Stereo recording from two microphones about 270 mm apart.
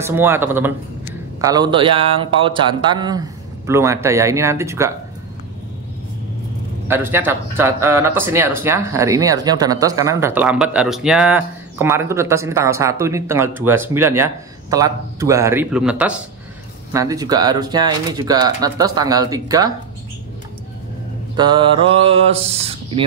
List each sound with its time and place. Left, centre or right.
0.0 s speech: centre
6.9 s speech: centre
21.4 s speech: centre